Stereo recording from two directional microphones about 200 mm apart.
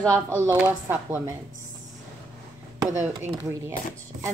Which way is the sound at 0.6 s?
10° right (ahead or behind).